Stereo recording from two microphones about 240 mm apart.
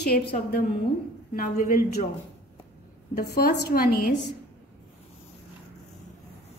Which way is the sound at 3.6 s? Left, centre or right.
Left.